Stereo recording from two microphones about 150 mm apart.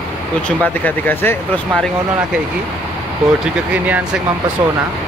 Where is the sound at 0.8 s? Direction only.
15° left (ahead or behind).